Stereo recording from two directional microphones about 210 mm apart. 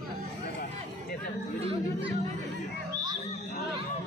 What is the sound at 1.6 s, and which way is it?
Chatter, 25° right (ahead or behind).